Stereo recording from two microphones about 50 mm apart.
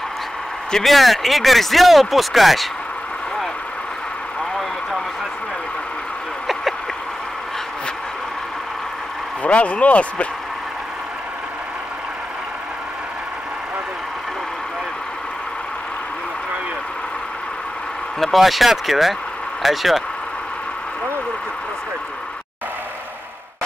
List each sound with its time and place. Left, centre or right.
0.8 s speech: centre
9.4 s speech: left
18.2 s speech: centre